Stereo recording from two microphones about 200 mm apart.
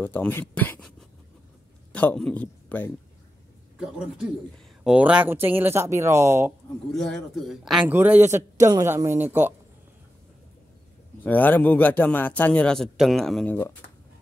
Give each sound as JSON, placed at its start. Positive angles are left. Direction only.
{"t": 0.0, "sound": "a man's voice", "side_deg": 10}
{"t": 4.8, "sound": "a man's voice", "side_deg": -5}
{"t": 6.9, "sound": "a man's voice", "side_deg": 0}
{"t": 11.2, "sound": "a man's voice", "side_deg": 10}